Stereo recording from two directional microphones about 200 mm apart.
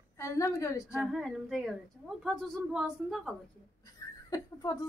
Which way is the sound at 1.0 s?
Centre (ahead or behind).